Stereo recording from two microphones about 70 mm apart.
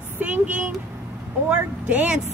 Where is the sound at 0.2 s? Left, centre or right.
Right.